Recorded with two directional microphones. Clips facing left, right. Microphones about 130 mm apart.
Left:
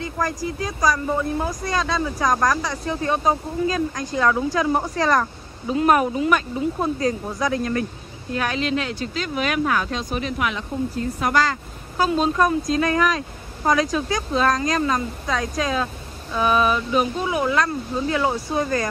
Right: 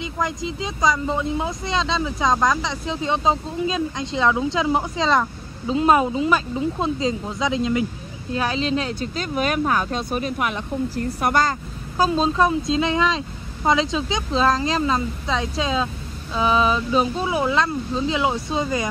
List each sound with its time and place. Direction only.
0.0 s speech: 20° right (ahead or behind)
8.4 s speech: 30° right (ahead or behind)
12.2 s speech: 25° right (ahead or behind)